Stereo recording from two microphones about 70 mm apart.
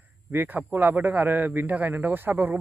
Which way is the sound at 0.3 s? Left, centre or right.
Right.